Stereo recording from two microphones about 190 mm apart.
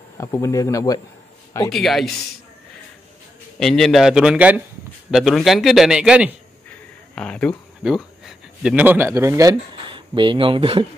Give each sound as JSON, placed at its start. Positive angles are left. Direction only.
{"t": 0.2, "sound": "speech", "side_deg": 15}
{"t": 1.7, "sound": "a man's voice", "side_deg": 0}
{"t": 3.5, "sound": "a man's voice", "side_deg": 0}
{"t": 6.7, "sound": "a sound", "side_deg": 5}
{"t": 7.8, "sound": "speech", "side_deg": -5}